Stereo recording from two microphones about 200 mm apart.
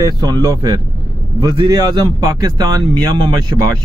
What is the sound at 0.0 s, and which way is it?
Speech, 20° right (ahead or behind).